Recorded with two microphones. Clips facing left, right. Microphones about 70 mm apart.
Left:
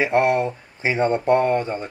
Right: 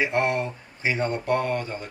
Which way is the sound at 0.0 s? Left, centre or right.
Left.